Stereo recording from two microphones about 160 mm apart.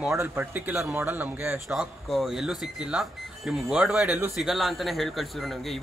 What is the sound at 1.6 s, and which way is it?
Speech, centre (ahead or behind).